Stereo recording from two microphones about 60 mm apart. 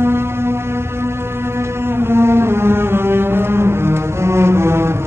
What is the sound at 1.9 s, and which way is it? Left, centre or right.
Music, right.